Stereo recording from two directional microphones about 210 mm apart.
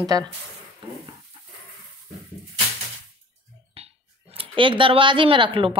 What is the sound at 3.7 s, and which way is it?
Speech, 30° right (ahead or behind).